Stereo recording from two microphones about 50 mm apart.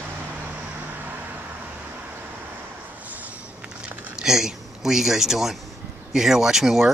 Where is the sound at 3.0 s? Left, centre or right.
Right.